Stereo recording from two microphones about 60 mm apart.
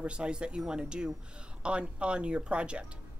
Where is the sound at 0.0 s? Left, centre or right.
Centre.